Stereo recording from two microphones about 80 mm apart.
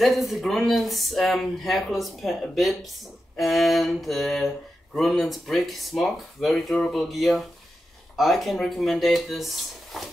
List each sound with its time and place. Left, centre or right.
0.0 s speech: centre